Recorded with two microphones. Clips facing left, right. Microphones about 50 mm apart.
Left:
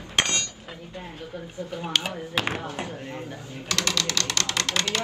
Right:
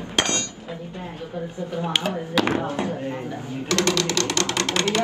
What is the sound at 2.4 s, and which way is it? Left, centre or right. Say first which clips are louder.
Speech: right 7 dB; right.